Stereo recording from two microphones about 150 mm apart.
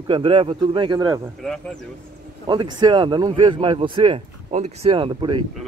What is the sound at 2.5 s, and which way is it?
Speech, 30° right (ahead or behind).